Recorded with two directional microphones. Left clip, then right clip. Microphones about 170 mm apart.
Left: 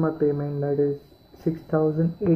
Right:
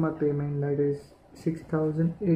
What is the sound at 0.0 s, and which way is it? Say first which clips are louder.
Speech: left 4 dB; 15° right (ahead or behind).